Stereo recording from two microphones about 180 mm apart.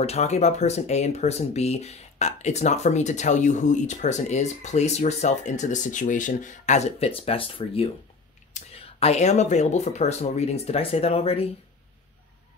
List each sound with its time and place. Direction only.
0.0 s speech: 35° left (ahead or behind)